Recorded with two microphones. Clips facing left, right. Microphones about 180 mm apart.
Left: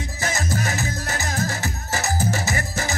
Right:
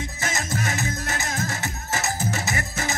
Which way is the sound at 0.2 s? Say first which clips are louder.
Left 3 dB; 35° left (ahead or behind).